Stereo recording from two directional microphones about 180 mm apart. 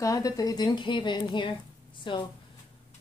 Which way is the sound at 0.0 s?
20° left (ahead or behind).